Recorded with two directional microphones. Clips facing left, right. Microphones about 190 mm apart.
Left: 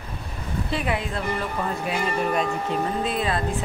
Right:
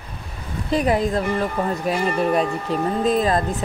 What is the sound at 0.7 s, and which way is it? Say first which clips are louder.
Speech: right 9 dB; 40° right (ahead or behind).